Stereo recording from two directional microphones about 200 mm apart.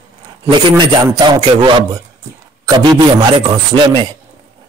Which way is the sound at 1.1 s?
20° right (ahead or behind).